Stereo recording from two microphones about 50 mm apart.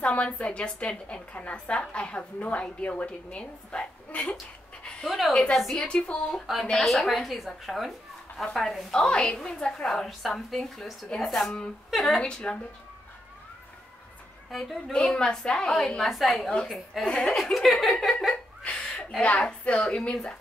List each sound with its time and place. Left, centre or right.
0.0 s a woman's voice: left
6.4 s a woman's voice: centre
12.2 s a woman's voice: centre
14.5 s a woman's voice: centre
14.9 s a woman's voice: centre
17.0 s a woman's voice: centre
17.3 s a woman's voice: centre
18.0 s laughter: centre
18.6 s a sound: left
19.6 s a woman's voice: left